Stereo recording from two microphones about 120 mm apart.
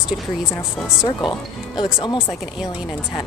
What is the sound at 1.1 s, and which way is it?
Speech, 40° left (ahead or behind).